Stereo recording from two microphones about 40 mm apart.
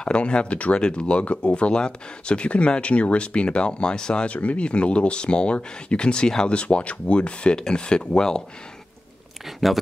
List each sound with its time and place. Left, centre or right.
0.0 s speech: left
4.3 s speech: left; by 8.4 s centre